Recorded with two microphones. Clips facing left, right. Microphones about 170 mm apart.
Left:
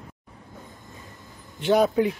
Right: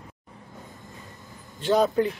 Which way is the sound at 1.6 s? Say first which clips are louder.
Left 1 dB; 10° left (ahead or behind).